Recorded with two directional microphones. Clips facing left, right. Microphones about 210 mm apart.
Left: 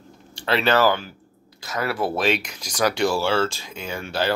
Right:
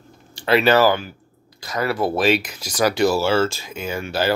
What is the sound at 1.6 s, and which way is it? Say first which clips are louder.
Speech: right 3 dB; 5° left (ahead or behind).